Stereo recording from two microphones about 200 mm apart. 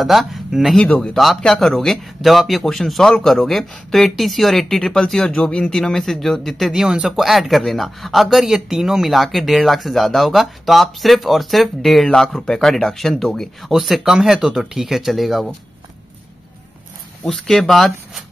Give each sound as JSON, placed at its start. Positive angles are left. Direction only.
{"t": 0.0, "sound": "speech", "side_deg": 0}
{"t": 17.2, "sound": "speech", "side_deg": 5}